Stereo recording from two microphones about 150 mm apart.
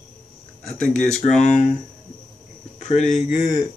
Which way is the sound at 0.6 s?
5° left (ahead or behind).